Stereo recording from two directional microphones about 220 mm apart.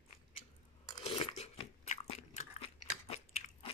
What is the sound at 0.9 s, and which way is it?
Crunch, 20° left (ahead or behind).